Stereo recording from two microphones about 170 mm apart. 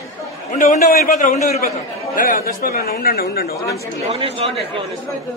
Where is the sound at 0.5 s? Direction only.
50° left (ahead or behind).